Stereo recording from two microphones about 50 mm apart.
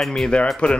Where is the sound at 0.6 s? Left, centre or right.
Left.